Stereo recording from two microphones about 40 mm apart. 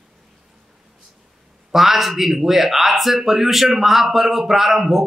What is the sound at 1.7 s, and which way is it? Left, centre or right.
Speech, centre.